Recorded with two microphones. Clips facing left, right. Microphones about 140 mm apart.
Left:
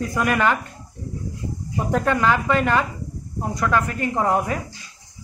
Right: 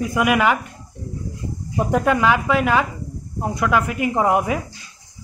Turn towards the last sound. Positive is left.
turn(degrees=-10)  # may be behind; listen again after turning